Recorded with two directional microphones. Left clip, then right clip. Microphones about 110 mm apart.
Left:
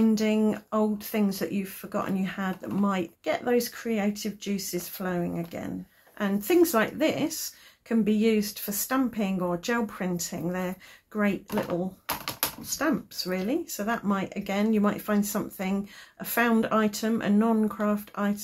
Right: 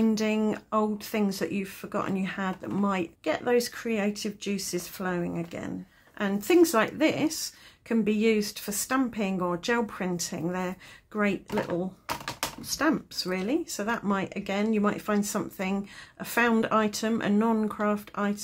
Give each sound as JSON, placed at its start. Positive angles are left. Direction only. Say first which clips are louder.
{"t": 0.0, "sound": "speech", "louder": "left 2 dB", "side_deg": -35}